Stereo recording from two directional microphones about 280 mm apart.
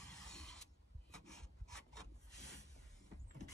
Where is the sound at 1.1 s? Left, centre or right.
Centre.